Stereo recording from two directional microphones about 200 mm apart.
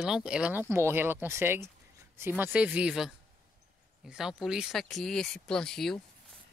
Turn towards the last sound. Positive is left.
turn(degrees=0)  # may be behind; listen again after turning